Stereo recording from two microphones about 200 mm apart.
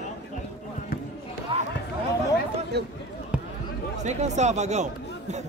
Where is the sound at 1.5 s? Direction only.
25° right (ahead or behind).